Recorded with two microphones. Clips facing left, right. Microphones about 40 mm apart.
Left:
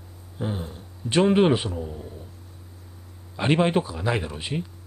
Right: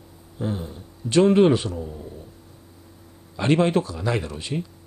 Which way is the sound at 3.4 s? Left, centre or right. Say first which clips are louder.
Right 1 dB; centre.